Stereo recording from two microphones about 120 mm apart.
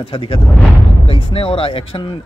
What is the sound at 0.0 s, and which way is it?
A man's voice, 45° left (ahead or behind).